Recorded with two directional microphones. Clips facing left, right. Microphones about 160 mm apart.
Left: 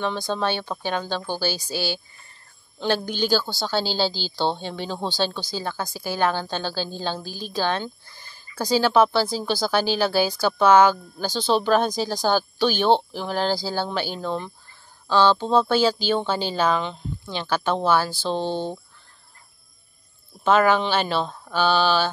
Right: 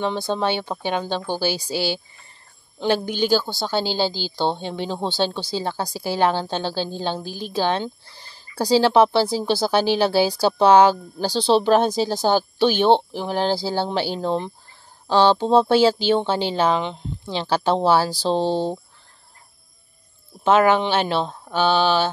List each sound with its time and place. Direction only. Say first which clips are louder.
0.0 s speech: right 2 dB; 20° right (ahead or behind)
20.4 s speech: right 2 dB; 20° right (ahead or behind)